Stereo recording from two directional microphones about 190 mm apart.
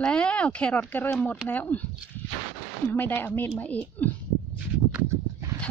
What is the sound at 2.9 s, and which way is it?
Speech, 10° left (ahead or behind).